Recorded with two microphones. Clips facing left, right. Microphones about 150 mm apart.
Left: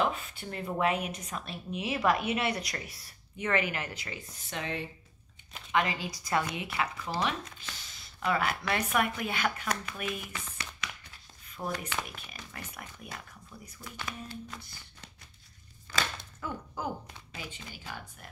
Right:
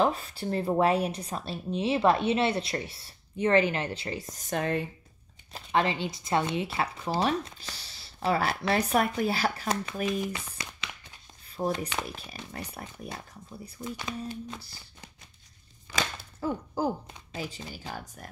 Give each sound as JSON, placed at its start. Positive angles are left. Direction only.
{"t": 0.0, "sound": "speech", "side_deg": -35}
{"t": 5.5, "sound": "speech", "side_deg": -35}
{"t": 10.2, "sound": "a sound", "side_deg": -20}
{"t": 11.4, "sound": "speech", "side_deg": -35}
{"t": 15.9, "sound": "speech", "side_deg": -20}
{"t": 16.3, "sound": "speech", "side_deg": -35}